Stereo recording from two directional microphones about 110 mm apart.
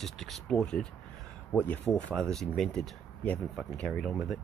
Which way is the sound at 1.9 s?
5° left (ahead or behind).